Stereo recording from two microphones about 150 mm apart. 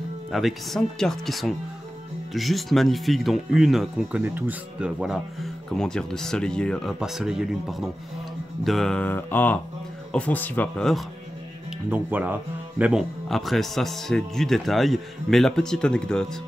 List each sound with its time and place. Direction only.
0.3 s speech: centre (ahead or behind)
8.6 s music: 5° left (ahead or behind)
11.9 s speech: 10° right (ahead or behind)
13.3 s speech: centre (ahead or behind)